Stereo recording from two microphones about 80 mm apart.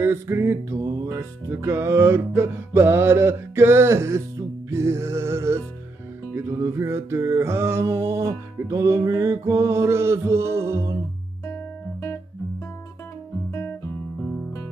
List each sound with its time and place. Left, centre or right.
0.0 s music: right
11.4 s guitar: left